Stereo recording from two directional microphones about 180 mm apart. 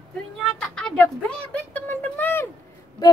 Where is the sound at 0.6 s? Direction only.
5° left (ahead or behind).